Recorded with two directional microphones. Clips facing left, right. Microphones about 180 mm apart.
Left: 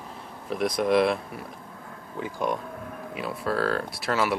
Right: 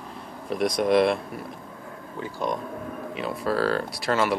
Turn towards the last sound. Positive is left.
turn(degrees=5)  # may be behind; listen again after turning